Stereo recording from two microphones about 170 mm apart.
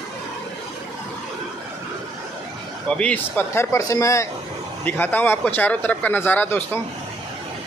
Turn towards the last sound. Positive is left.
turn(degrees=10)  # may be behind; listen again after turning